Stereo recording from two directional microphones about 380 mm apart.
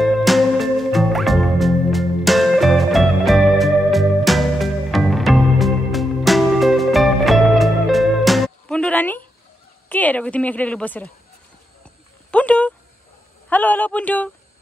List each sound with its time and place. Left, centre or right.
0.0 s music: centre
9.8 s a woman's voice: centre
12.3 s a sound: centre
13.5 s speech: centre